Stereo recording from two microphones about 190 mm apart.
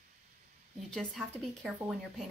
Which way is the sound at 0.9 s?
Centre (ahead or behind).